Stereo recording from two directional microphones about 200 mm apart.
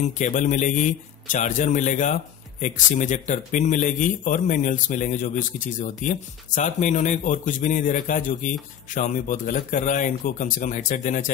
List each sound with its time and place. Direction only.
0.0 s speech: 40° left (ahead or behind)